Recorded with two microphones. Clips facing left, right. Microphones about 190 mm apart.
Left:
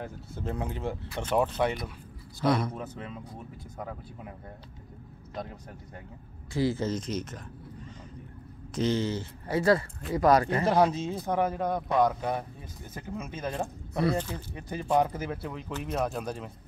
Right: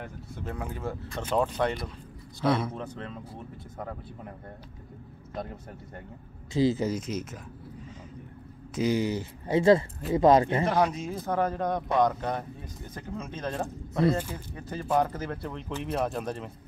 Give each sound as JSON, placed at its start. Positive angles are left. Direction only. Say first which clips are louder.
{"t": 0.0, "sound": "speech", "louder": "left 2 dB", "side_deg": 30}
{"t": 2.4, "sound": "speech", "louder": "even", "side_deg": -5}
{"t": 2.7, "sound": "speech", "louder": "right 1 dB", "side_deg": 5}
{"t": 5.3, "sound": "speech", "louder": "right 2 dB", "side_deg": -5}
{"t": 6.5, "sound": "speech", "louder": "right 3 dB", "side_deg": -20}
{"t": 8.7, "sound": "speech", "louder": "right 1 dB", "side_deg": -10}
{"t": 10.6, "sound": "speech", "louder": "left 2 dB", "side_deg": 30}
{"t": 11.2, "sound": "speech", "louder": "right 1 dB", "side_deg": 10}
{"t": 14.1, "sound": "speech", "louder": "even", "side_deg": -10}
{"t": 14.5, "sound": "speech", "louder": "left 1 dB", "side_deg": 15}